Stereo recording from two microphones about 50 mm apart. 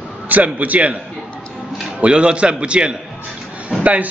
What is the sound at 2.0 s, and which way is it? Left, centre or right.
A man's voice, right.